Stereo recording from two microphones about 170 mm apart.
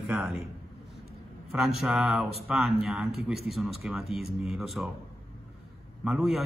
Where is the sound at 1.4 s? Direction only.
Centre (ahead or behind).